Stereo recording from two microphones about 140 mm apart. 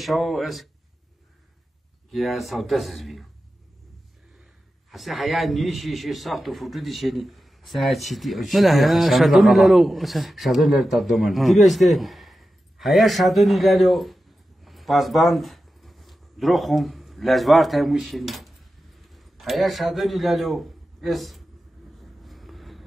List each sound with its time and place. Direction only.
0.0 s speech: centre (ahead or behind)
2.0 s speech: centre (ahead or behind)
4.9 s a man's voice: centre (ahead or behind)
22.2 s vehicle: centre (ahead or behind)